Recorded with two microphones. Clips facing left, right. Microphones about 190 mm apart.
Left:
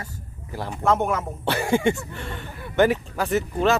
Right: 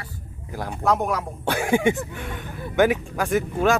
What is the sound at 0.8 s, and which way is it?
Speech, centre (ahead or behind).